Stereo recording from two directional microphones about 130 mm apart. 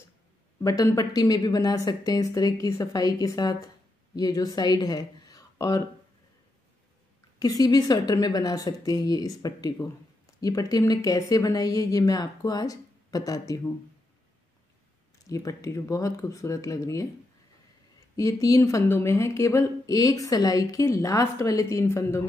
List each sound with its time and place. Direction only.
0.6 s speech: 25° left (ahead or behind)
7.3 s speech: 30° left (ahead or behind)
15.2 s speech: 25° left (ahead or behind)
18.1 s speech: 25° left (ahead or behind)